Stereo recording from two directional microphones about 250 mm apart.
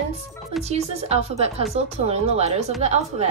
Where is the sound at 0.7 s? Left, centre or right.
Right.